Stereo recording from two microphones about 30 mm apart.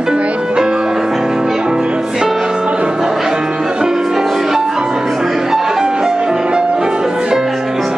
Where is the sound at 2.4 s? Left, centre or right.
Right.